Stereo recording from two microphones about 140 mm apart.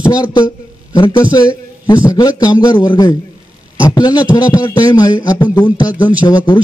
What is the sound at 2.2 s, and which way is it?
A man's voice, 30° left (ahead or behind).